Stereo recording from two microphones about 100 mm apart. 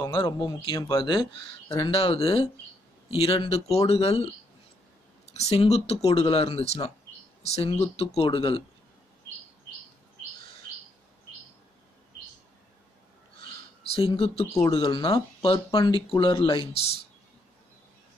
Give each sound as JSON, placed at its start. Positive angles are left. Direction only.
{"t": 0.1, "sound": "speech", "side_deg": 50}
{"t": 5.3, "sound": "speech", "side_deg": 90}
{"t": 6.3, "sound": "speech", "side_deg": 70}
{"t": 13.9, "sound": "speech", "side_deg": 70}
{"t": 14.7, "sound": "speech", "side_deg": 55}
{"t": 15.4, "sound": "speech", "side_deg": 65}
{"t": 16.5, "sound": "speech", "side_deg": 80}